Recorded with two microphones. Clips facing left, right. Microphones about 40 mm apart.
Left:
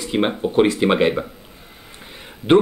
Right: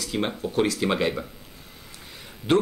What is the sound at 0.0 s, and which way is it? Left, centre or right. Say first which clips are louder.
A man's voice: left 7 dB; left.